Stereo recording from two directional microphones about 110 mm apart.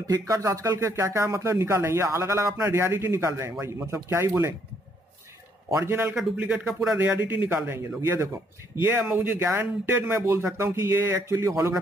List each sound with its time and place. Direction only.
0.0 s speech: 35° right (ahead or behind)
5.8 s speech: 25° right (ahead or behind)
6.1 s speech: 10° right (ahead or behind)